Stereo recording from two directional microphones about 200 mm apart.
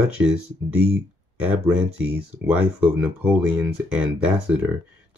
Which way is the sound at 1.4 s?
5° right (ahead or behind).